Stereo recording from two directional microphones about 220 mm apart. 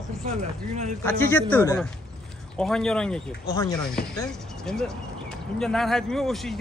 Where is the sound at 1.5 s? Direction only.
10° left (ahead or behind).